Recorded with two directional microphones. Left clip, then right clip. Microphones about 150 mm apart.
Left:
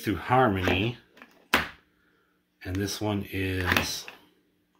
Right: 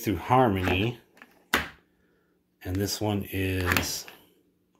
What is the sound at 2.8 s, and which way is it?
Speech, 25° right (ahead or behind).